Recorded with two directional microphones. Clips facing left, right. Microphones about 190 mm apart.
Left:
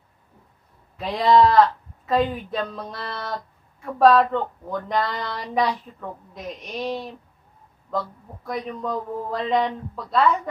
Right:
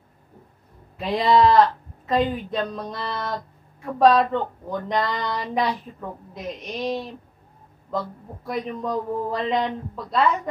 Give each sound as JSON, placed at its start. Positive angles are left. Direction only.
{"t": 0.9, "sound": "speech", "side_deg": 0}
{"t": 8.5, "sound": "speech", "side_deg": 0}